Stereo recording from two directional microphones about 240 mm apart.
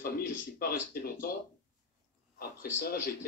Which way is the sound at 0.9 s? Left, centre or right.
Left.